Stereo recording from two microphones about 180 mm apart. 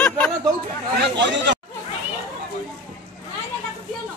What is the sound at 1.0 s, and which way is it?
Speech, 80° right.